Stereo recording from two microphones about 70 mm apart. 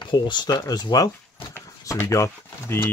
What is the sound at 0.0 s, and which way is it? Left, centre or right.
Speech, left.